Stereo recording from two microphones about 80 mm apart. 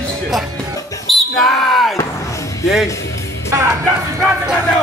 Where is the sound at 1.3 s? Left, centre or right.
Centre.